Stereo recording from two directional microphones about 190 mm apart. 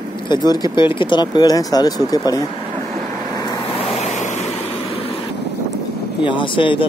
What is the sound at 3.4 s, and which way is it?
Vehicle, 20° left (ahead or behind).